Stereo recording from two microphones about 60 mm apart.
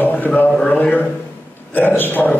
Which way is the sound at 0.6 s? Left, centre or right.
Centre.